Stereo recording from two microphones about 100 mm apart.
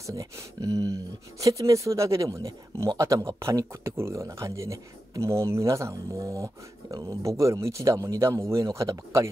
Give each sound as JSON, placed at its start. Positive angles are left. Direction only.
{"t": 0.0, "sound": "speech", "side_deg": -35}